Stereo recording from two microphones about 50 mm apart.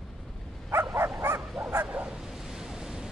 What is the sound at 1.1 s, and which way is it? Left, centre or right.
Bow-wow, right.